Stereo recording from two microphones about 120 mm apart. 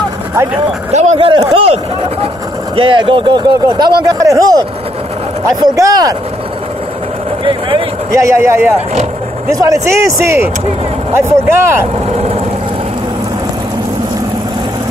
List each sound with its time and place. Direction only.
1.1 s speech: 40° right (ahead or behind)
8.1 s speech: 25° right (ahead or behind)